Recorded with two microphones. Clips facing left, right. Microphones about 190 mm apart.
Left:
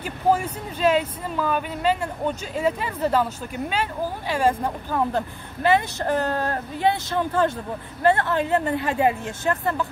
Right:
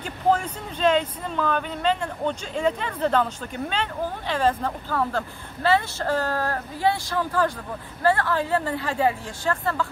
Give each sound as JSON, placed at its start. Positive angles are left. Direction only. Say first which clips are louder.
{"t": 0.0, "sound": "speech", "louder": "left 1 dB", "side_deg": 10}